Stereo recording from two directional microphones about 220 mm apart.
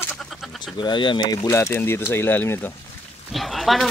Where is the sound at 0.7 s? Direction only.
20° left (ahead or behind).